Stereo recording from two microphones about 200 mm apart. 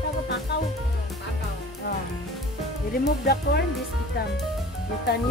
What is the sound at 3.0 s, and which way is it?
Speech, 55° left (ahead or behind).